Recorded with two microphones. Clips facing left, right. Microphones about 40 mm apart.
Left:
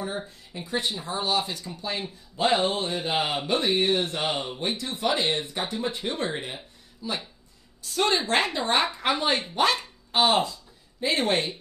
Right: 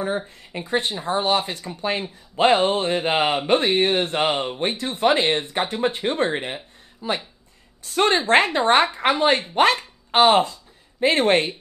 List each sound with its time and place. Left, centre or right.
0.5 s speech: right